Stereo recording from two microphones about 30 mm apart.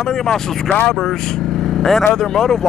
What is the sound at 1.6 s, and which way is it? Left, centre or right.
Vehicle, centre.